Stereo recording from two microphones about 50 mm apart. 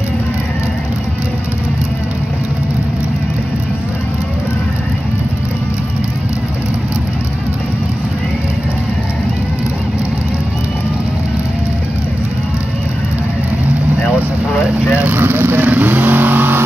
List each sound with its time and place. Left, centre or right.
15.0 s vehicle: right